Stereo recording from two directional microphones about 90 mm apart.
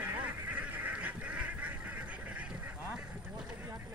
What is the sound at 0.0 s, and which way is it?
Goose, 20° right (ahead or behind).